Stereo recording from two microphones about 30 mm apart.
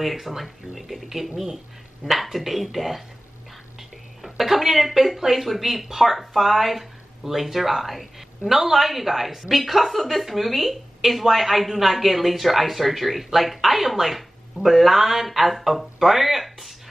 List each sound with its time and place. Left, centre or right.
0.0 s a woman's voice: centre
2.0 s speech: right
2.3 s a woman's voice: centre
4.2 s a sound: centre
5.2 s a woman's voice: centre